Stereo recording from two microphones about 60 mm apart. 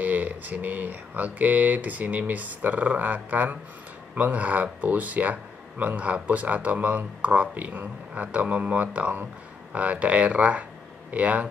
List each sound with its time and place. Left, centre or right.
0.0 s speech: right